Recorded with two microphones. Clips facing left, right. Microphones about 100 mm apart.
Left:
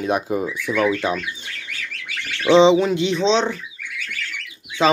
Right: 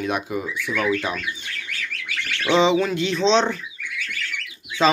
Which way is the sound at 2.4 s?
25° left (ahead or behind).